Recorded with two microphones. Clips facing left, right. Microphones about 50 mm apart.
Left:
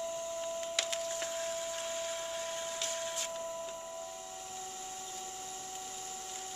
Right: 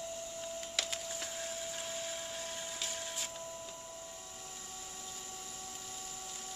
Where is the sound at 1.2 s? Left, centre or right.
Centre.